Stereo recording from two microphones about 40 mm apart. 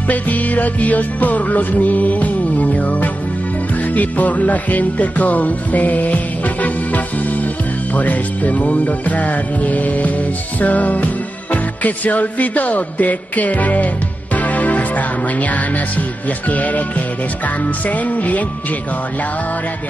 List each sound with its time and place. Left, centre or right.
0.1 s music: left
17.8 s music: left